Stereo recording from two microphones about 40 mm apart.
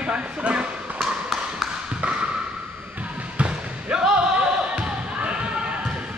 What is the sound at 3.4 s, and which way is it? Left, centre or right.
Basketball bounce, right.